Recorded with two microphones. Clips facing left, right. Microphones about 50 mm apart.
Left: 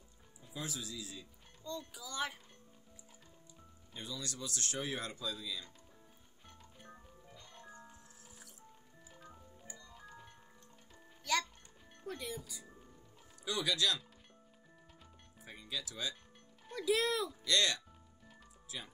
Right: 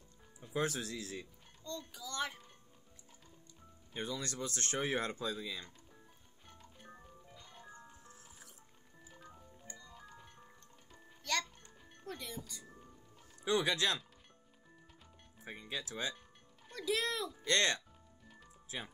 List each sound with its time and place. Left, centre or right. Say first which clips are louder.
0.4 s speech: right 8 dB; right
1.6 s a child's voice: left 1 dB; centre
3.9 s speech: right 4 dB; right
6.4 s music: even; centre
9.1 s music: even; centre
12.0 s speech: left 2 dB; centre
13.4 s speech: right 3 dB; right
15.4 s speech: right 1 dB; right
16.6 s music: left 3 dB; centre
17.5 s speech: right 2 dB; right